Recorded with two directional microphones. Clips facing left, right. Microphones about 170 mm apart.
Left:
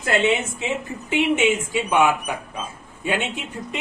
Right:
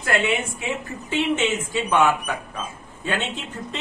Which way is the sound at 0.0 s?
20° left (ahead or behind).